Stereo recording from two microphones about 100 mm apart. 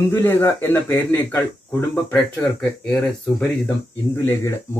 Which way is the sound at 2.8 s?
5° left (ahead or behind).